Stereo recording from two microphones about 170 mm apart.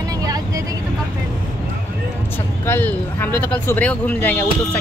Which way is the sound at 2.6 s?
10° left (ahead or behind).